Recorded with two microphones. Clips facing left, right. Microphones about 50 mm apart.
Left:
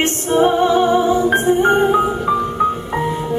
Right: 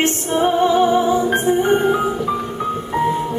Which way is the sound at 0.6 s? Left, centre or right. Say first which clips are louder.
Left 1 dB; centre.